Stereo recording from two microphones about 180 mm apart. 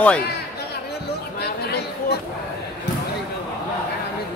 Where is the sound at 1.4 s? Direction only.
65° left (ahead or behind).